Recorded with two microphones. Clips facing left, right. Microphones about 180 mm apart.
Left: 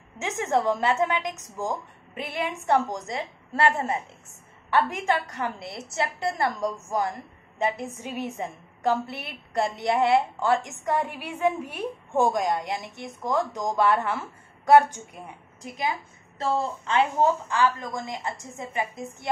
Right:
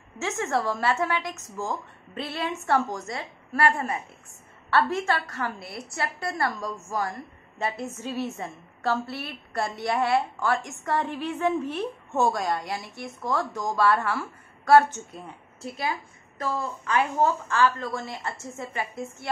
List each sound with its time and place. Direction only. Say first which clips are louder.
0.2 s a woman's voice: left 2 dB; 15° left (ahead or behind)